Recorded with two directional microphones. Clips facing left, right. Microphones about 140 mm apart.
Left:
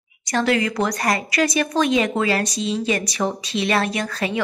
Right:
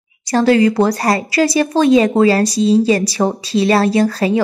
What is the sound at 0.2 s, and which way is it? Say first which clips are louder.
A woman's voice: right 8 dB; 30° right (ahead or behind).